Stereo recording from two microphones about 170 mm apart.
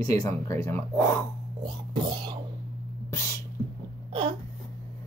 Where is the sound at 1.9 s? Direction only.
25° right (ahead or behind).